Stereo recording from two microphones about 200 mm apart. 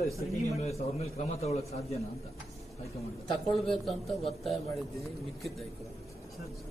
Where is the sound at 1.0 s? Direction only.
30° left (ahead or behind).